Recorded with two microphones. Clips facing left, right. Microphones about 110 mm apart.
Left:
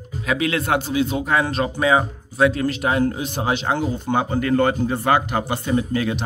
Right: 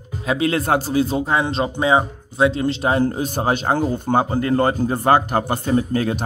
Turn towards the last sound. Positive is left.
turn(degrees=-40)  # may be behind; listen again after turning